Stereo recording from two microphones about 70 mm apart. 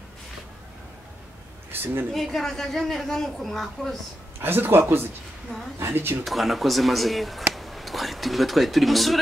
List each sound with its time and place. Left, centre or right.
1.7 s a sound: right
2.1 s a woman's voice: centre
4.4 s speech: right
6.2 s speech: centre